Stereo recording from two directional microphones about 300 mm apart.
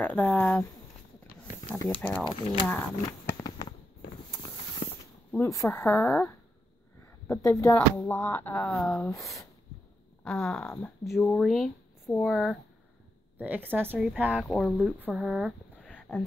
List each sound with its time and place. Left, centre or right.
0.0 s speech: centre
1.7 s speech: centre
3.3 s fireworks: centre
4.8 s a sound: left
5.3 s speech: centre